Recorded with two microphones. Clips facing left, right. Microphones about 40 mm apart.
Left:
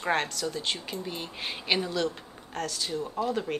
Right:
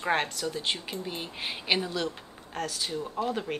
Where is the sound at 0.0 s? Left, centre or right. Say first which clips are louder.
Even; centre.